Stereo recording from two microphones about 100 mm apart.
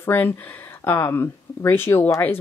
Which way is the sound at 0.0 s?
20° left (ahead or behind).